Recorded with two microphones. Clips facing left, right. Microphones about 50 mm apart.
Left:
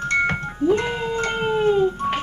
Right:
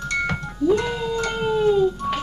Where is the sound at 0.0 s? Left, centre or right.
Left.